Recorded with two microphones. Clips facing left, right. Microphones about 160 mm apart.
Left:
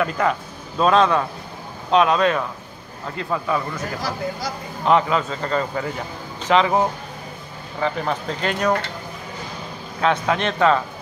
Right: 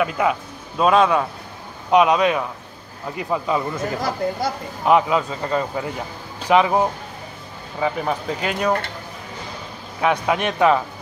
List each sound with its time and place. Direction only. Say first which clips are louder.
0.0 s a man's voice: right 1 dB; 5° right (ahead or behind)
7.8 s speech: right 1 dB; 10° right (ahead or behind)
9.9 s speech: even; 10° right (ahead or behind)